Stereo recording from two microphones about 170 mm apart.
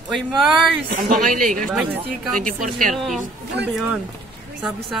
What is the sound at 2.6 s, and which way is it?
Speech, centre (ahead or behind).